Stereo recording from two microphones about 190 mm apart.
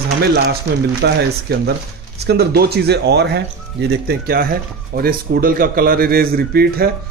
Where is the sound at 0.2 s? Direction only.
55° right (ahead or behind).